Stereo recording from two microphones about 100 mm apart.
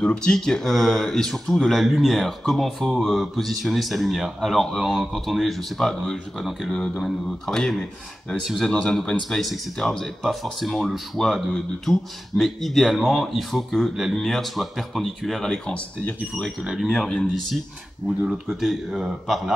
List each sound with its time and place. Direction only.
0.0 s speech: 10° left (ahead or behind)
16.6 s speech: 5° right (ahead or behind)
18.0 s speech: 5° right (ahead or behind)